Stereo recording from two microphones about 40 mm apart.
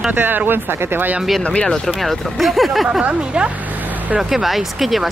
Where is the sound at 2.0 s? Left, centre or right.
Centre.